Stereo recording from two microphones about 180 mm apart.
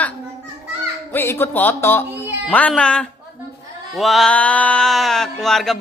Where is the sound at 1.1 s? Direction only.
15° left (ahead or behind).